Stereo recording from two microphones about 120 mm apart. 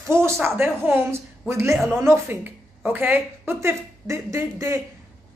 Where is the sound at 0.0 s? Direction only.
20° right (ahead or behind).